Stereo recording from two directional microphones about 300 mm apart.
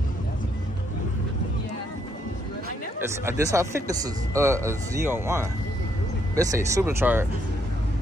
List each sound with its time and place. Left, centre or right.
3.0 s speech: centre